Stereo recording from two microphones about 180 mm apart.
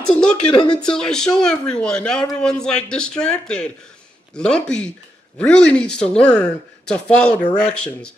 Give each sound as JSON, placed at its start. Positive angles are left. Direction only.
{"t": 0.1, "sound": "speech", "side_deg": 5}
{"t": 0.5, "sound": "speech", "side_deg": 25}
{"t": 0.8, "sound": "speech", "side_deg": 5}